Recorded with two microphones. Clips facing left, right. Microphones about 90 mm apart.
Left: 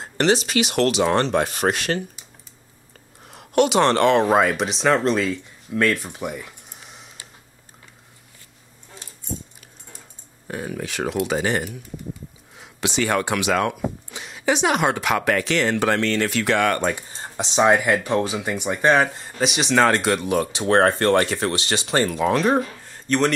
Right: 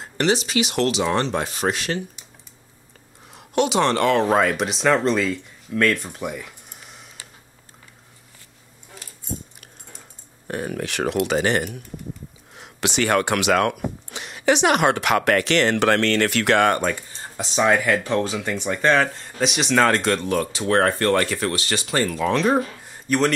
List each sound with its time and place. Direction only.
0.2 s speech: 50° left (ahead or behind)
3.3 s speech: 55° left (ahead or behind)
4.0 s speech: 25° left (ahead or behind)
4.3 s speech: 5° left (ahead or behind)
10.5 s speech: 60° right (ahead or behind)
17.2 s speech: 20° left (ahead or behind)
20.5 s speech: 25° left (ahead or behind)
22.3 s speech: centre (ahead or behind)
22.8 s a sound: 10° right (ahead or behind)